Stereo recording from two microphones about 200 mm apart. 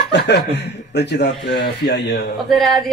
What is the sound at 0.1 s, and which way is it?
Speech, 55° left (ahead or behind).